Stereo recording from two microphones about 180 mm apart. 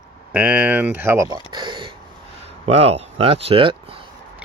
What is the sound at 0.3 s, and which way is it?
Speech, 10° right (ahead or behind).